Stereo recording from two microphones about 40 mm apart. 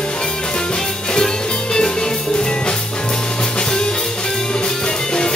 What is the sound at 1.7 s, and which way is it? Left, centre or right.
Music, centre.